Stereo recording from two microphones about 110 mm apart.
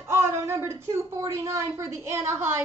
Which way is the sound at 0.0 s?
25° right (ahead or behind).